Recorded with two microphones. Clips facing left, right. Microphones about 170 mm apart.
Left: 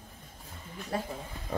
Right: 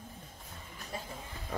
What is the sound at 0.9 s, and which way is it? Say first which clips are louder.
Speech: left 9 dB; 65° left (ahead or behind).